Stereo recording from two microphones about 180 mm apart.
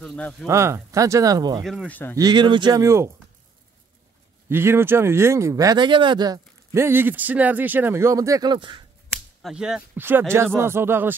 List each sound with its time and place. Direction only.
0.0 s speech: 5° left (ahead or behind)
0.5 s speech: 15° right (ahead or behind)
1.6 s speech: centre (ahead or behind)
2.1 s speech: 25° right (ahead or behind)
4.5 s speech: 15° right (ahead or behind)
9.4 s speech: 5° right (ahead or behind)